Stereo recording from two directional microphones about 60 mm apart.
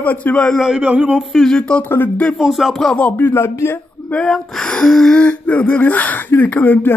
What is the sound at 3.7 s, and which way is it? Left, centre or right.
Speech, left.